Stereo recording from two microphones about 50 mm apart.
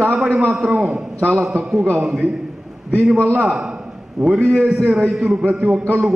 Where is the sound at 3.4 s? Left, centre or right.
Centre.